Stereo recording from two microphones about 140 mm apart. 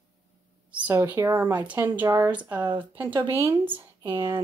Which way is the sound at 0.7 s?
15° right (ahead or behind).